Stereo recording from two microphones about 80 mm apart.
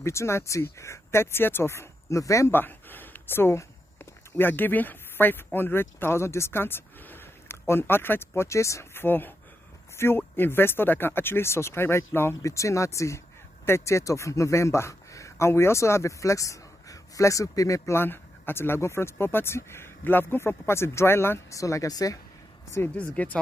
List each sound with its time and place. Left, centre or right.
0.0 s a man's voice: left
2.5 s speech: left
8.4 s a man's voice: left
9.0 s speech: left
12.4 s a man's voice: left
21.5 s speech: left
22.8 s speech: centre